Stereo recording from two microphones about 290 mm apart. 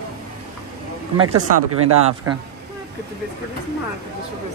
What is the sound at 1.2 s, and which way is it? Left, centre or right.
Speech, right.